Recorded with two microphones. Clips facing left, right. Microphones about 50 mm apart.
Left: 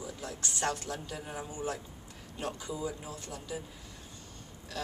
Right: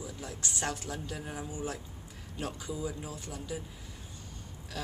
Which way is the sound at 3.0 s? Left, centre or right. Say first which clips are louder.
Right 1 dB; centre.